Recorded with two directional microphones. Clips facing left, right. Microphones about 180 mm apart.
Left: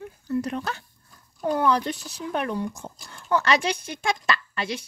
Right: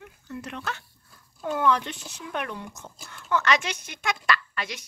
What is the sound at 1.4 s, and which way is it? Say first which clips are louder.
Speech: left 2 dB; 35° left (ahead or behind).